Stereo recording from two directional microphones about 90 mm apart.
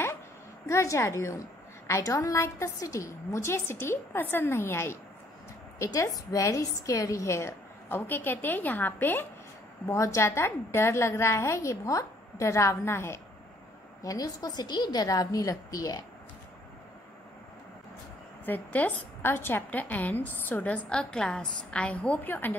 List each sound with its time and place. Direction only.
0.7 s a woman's voice: 35° left (ahead or behind)
9.8 s a woman's voice: 35° left (ahead or behind)
14.0 s a woman's voice: 45° left (ahead or behind)
18.4 s a woman's voice: 20° left (ahead or behind)